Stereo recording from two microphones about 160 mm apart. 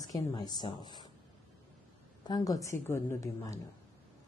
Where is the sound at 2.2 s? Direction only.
25° left (ahead or behind).